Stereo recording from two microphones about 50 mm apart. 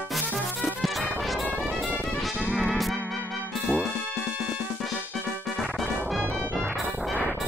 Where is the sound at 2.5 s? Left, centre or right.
Centre.